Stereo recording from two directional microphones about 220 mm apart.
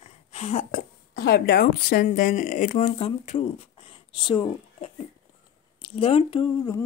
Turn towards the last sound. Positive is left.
turn(degrees=20)  # may be behind; listen again after turning